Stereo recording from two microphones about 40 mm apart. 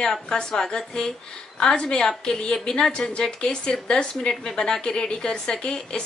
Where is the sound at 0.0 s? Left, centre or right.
Centre.